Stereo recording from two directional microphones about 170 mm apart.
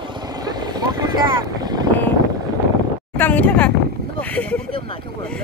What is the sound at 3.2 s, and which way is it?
A woman's voice, 10° left (ahead or behind).